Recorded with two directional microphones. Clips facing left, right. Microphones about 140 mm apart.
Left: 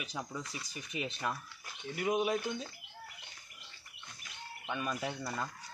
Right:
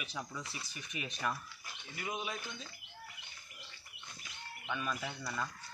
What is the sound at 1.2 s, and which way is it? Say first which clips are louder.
Speech: right 1 dB; 20° left (ahead or behind).